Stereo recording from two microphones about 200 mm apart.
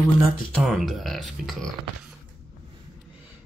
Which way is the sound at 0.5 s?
Centre (ahead or behind).